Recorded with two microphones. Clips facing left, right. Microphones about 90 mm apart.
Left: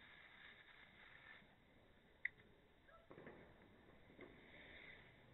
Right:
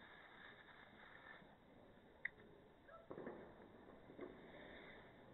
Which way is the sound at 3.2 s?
50° right (ahead or behind).